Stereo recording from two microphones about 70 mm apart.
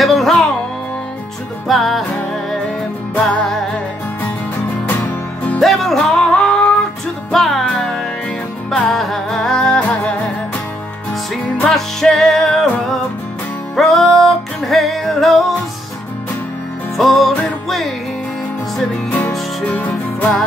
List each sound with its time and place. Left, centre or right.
0.0 s music: centre
1.7 s music: centre
3.2 s music: centre
4.8 s music: left
5.6 s music: centre
7.3 s music: centre
11.7 s music: centre
13.7 s music: centre
16.9 s music: centre
19.6 s music: left